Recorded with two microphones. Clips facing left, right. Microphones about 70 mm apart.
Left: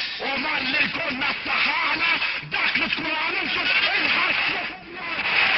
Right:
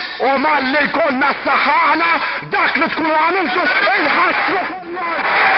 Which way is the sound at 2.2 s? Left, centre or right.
Right.